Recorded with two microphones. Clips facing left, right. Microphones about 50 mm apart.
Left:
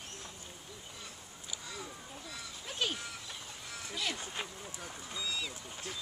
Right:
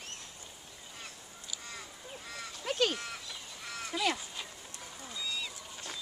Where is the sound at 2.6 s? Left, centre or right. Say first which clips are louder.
Right 6 dB; right.